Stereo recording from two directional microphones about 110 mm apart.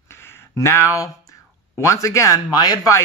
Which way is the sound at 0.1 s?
25° left (ahead or behind).